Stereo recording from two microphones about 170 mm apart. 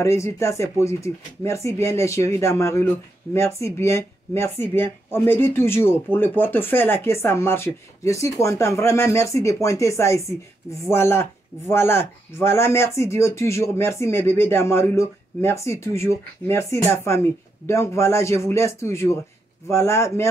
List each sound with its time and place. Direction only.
0.0 s speech: 15° left (ahead or behind)